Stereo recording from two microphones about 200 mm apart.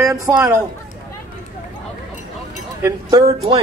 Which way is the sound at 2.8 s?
20° right (ahead or behind).